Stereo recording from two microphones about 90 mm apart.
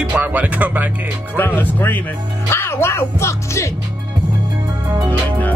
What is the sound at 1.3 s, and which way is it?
Speech, 20° left (ahead or behind).